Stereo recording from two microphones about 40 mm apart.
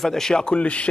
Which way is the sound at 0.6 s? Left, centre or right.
Left.